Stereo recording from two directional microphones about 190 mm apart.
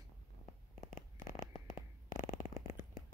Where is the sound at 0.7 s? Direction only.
40° left (ahead or behind).